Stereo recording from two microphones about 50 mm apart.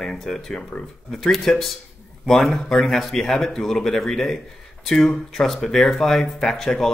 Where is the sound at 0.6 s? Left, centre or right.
Left.